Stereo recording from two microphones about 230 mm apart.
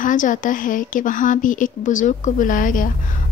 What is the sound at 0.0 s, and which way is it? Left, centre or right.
A woman's voice, left.